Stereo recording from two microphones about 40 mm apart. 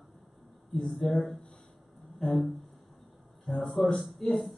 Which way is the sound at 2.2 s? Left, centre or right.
Centre.